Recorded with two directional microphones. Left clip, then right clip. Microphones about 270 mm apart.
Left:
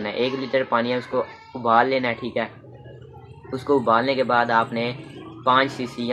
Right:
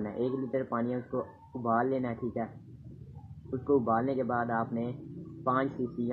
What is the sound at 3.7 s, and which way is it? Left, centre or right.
Speech, centre.